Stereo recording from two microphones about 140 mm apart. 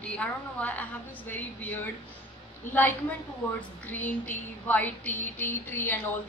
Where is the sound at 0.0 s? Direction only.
10° left (ahead or behind).